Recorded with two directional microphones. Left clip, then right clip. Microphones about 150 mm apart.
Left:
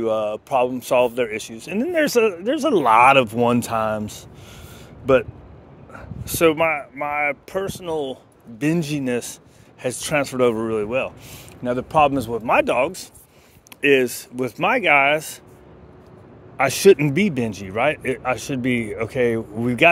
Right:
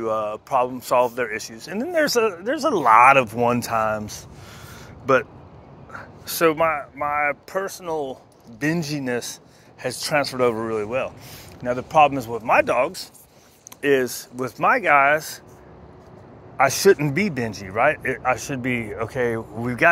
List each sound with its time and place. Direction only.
0.0 s speech: 90° left
0.7 s speech: 80° left
5.0 s a man's voice: 45° left (ahead or behind); by 11.1 s 90° left
11.6 s a man's voice: 70° left (ahead or behind)
13.7 s speech: 50° left (ahead or behind); by 15.3 s 70° left (ahead or behind)
16.5 s a man's voice: 60° left (ahead or behind)
19.6 s speech: 90° left